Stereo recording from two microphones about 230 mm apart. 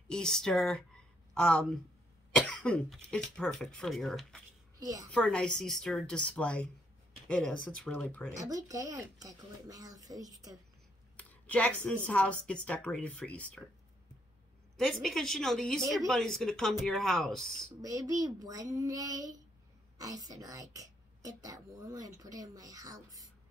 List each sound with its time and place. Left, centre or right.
0.1 s speech: centre
4.7 s a woman's voice: centre
5.1 s speech: centre
8.4 s a woman's voice: centre
11.1 s a sound: centre
12.1 s speech: centre
14.8 s speech: centre
17.8 s a woman's voice: centre